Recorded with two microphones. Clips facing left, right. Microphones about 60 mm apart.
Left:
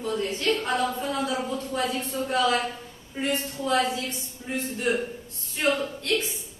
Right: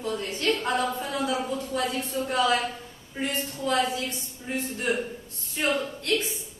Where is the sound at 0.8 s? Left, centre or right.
Centre.